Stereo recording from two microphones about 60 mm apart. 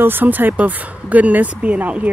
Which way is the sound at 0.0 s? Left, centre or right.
Right.